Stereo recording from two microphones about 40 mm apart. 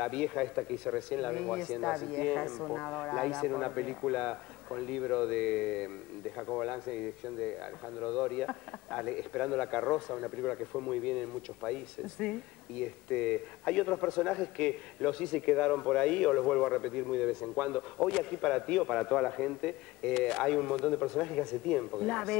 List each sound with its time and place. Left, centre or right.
0.0 s a man's voice: left